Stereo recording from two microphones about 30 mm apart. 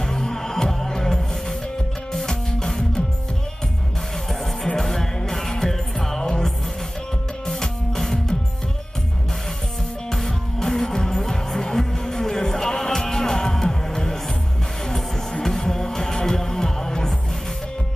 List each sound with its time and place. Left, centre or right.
0.0 s music: centre
4.7 s music: centre
10.1 s music: centre
15.4 s music: centre